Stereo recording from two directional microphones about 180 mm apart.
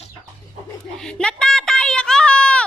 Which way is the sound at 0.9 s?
5° left (ahead or behind).